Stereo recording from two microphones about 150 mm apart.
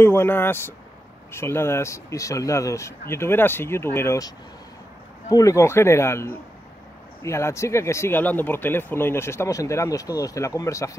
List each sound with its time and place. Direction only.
0.0 s speech: 15° left (ahead or behind)
5.3 s speech: 20° left (ahead or behind)